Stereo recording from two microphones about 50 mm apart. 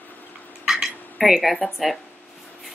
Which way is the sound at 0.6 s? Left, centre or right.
Centre.